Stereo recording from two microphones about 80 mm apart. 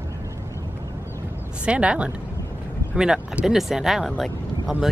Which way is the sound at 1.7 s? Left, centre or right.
Centre.